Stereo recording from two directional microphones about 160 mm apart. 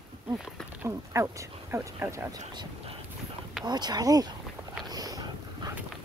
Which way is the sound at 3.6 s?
25° right (ahead or behind).